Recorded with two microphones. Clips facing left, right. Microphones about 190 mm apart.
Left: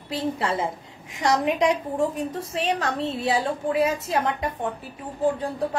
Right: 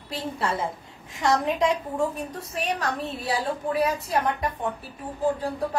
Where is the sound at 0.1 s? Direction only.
25° left (ahead or behind).